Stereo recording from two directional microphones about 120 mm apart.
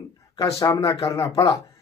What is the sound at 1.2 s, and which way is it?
Speech, 45° left (ahead or behind).